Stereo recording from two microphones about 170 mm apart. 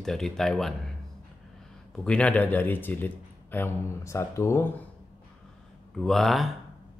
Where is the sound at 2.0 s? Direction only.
5° left (ahead or behind).